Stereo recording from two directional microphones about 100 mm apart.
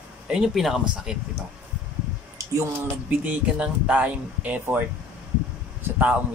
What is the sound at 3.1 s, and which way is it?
Speech, 15° right (ahead or behind).